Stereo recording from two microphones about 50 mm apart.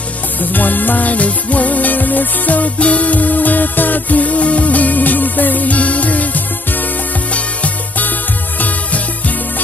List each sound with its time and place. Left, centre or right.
0.4 s music: left